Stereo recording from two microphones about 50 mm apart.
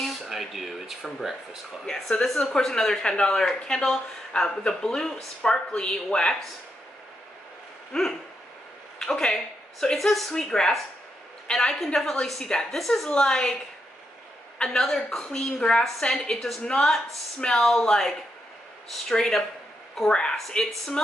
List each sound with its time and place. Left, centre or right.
0.0 s a woman's voice: centre
2.5 s speech: centre
9.0 s speech: centre
9.9 s a woman's voice: centre
13.1 s speech: centre
14.6 s speech: centre